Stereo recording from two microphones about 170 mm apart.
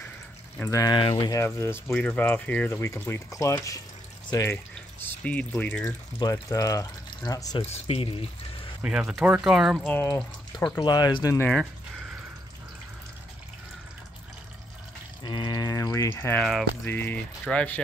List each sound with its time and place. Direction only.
0.6 s speech: 20° left (ahead or behind)
1.4 s speech: 15° left (ahead or behind)
5.2 s speech: 5° left (ahead or behind)
6.1 s speech: 20° left (ahead or behind)
7.6 s speech: 35° left (ahead or behind)
8.8 s speech: 5° right (ahead or behind)
9.8 s speech: 10° left (ahead or behind)
10.8 s speech: 25° left (ahead or behind)
11.3 s speech: 5° left (ahead or behind)
15.2 s speech: 25° left (ahead or behind); by 17.8 s 5° left (ahead or behind)